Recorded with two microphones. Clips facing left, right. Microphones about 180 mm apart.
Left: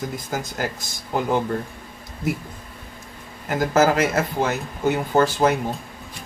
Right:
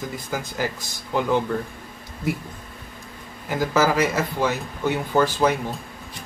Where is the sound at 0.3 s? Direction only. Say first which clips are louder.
Right 1 dB; 45° left (ahead or behind).